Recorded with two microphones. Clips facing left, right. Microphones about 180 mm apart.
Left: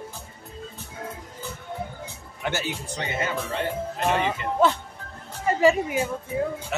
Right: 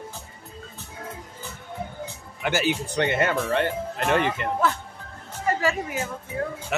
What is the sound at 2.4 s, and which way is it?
Speech, 90° right.